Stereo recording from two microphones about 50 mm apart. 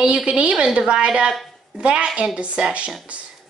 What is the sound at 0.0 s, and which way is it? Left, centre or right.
A woman's voice, centre.